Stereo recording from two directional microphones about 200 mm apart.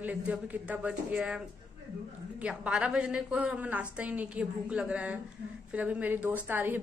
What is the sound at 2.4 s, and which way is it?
A woman's voice, 5° right (ahead or behind).